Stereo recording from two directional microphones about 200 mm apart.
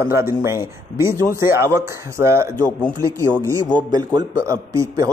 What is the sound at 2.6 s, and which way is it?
Speech, 10° left (ahead or behind).